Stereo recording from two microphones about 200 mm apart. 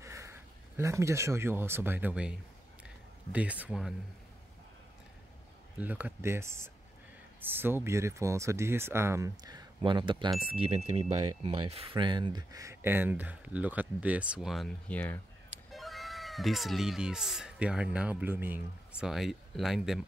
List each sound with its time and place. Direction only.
0.0 s speech: 15° right (ahead or behind)
2.8 s a sound: 5° right (ahead or behind)
5.8 s speech: 10° right (ahead or behind)